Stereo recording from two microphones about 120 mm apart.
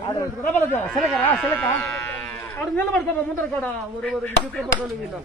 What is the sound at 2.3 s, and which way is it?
Livestock, 15° left (ahead or behind).